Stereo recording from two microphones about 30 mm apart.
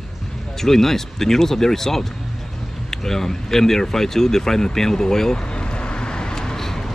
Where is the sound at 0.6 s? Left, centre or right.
Centre.